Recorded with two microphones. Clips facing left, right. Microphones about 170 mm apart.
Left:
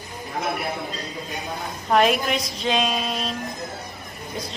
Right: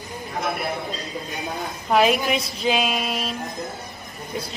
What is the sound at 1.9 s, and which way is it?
A woman's voice, centre (ahead or behind).